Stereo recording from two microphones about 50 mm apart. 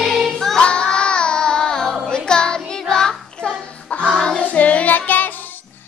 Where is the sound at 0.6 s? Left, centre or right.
Centre.